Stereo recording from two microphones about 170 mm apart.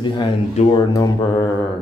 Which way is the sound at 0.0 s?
30° left (ahead or behind).